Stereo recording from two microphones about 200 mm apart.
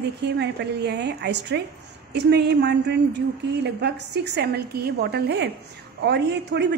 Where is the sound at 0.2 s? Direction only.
55° right (ahead or behind).